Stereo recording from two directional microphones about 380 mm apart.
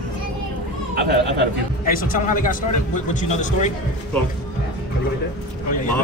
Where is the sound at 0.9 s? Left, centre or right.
Right.